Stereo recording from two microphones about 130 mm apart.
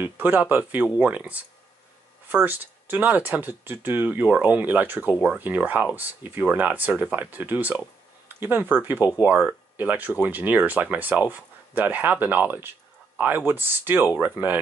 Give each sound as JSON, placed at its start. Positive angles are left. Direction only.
{"t": 0.0, "sound": "speech", "side_deg": -15}